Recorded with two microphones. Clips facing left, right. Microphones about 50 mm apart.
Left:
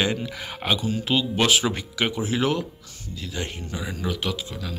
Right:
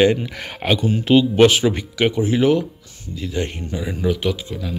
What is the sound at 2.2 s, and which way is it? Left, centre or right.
Speech, centre.